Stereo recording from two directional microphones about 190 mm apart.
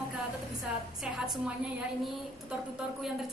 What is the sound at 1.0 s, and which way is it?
A woman's voice, 5° right (ahead or behind).